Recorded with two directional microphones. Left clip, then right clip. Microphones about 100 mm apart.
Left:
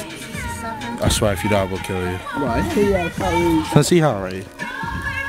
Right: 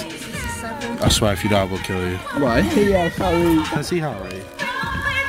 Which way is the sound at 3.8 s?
40° left (ahead or behind).